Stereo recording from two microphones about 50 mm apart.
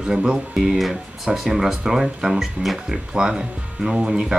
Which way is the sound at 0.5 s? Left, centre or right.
Centre.